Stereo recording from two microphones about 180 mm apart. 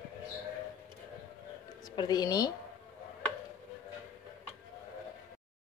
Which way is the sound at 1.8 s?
20° left (ahead or behind).